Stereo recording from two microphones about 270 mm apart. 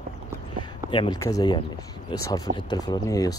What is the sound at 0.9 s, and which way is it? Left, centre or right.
Speech, centre.